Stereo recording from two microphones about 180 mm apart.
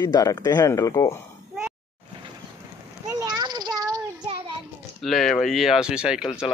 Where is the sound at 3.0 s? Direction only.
20° right (ahead or behind).